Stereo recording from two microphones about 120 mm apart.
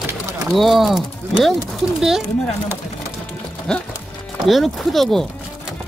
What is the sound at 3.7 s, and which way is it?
Speech, 5° left (ahead or behind).